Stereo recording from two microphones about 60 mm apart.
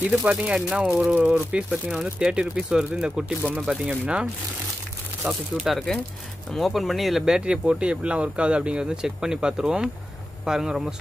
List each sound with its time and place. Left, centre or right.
0.3 s speech: centre
5.3 s speech: centre